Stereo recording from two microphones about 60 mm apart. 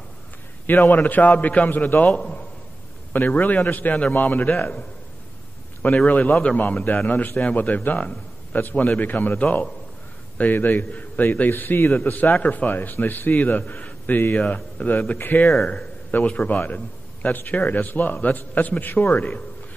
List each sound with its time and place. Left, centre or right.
0.7 s a man's voice: left
3.1 s a man's voice: left
6.6 s a man's voice: left